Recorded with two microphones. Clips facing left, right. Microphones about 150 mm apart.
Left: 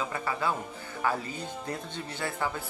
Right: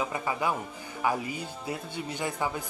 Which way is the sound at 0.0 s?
15° right (ahead or behind).